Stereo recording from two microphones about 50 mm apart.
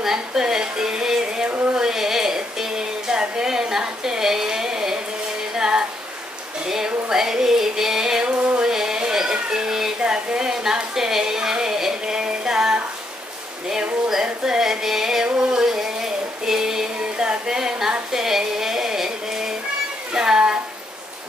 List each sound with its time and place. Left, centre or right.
0.0 s music: centre
6.7 s a sound: centre
20.2 s music: centre